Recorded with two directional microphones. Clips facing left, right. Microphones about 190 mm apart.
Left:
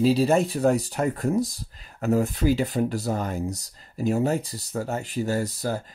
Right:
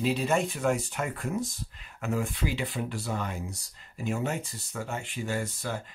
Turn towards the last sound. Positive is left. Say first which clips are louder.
# left 6 dB
turn(degrees=40)  # may be behind; listen again after turning